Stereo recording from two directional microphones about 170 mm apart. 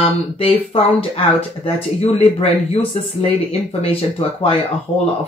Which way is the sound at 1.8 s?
40° left (ahead or behind).